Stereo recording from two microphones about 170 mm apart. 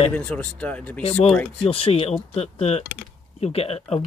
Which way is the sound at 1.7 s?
35° left (ahead or behind).